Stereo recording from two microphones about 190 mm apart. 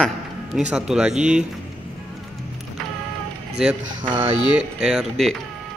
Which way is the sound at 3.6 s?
5° right (ahead or behind).